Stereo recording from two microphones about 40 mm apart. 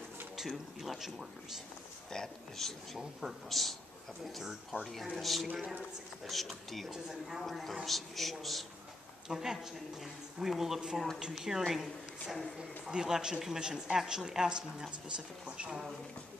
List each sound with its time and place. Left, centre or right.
0.4 s speech: centre
2.0 s a woman's voice: centre
4.7 s speech: right
5.1 s a woman's voice: centre
6.9 s a woman's voice: centre
9.3 s a woman's voice: centre